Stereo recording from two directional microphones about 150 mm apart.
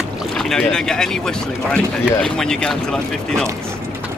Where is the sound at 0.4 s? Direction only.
5° left (ahead or behind).